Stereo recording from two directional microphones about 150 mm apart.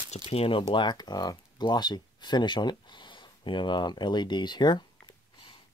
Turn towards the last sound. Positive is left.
turn(degrees=30)  # may be behind; listen again after turning